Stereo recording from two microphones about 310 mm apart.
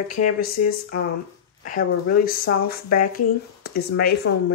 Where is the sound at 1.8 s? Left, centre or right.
Left.